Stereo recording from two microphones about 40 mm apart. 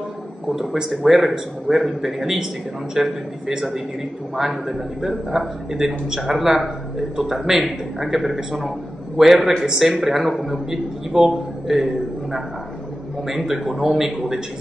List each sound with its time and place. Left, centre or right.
0.5 s a man's voice: centre
5.3 s a man's voice: centre